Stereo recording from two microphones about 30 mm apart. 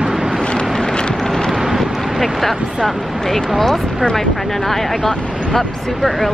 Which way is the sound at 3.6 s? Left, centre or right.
Centre.